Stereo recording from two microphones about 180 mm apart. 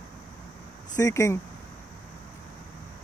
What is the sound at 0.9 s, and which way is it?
Speech, 20° left (ahead or behind).